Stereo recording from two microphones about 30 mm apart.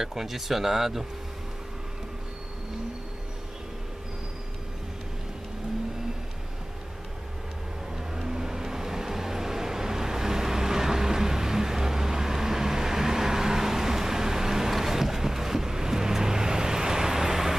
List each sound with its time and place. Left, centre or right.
0.0 s speech: centre
8.1 s vehicle: centre